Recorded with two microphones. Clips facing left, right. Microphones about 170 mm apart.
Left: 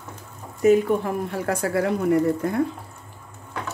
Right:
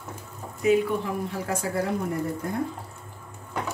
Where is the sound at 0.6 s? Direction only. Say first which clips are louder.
Left 5 dB; 45° left (ahead or behind).